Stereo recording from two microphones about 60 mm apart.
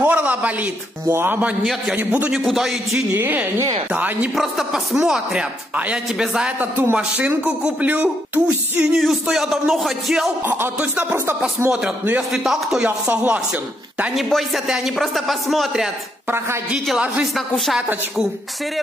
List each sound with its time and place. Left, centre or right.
0.0 s a man's voice: right
1.6 s speech: centre
2.0 s speech: right
2.5 s speech: centre
3.2 s a man's voice: right
4.4 s speech: centre
6.6 s a man's voice: right
7.0 s speech: right
8.9 s speech: centre
10.8 s speech: right
12.2 s speech: centre
14.1 s speech: centre